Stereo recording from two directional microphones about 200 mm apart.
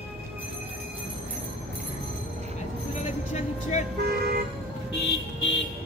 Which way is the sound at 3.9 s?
50° right (ahead or behind).